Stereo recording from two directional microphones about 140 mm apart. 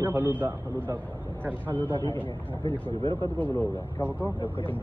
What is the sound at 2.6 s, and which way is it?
Speech, 40° right (ahead or behind).